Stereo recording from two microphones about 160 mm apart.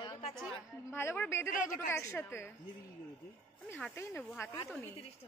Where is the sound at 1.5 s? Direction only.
55° left (ahead or behind).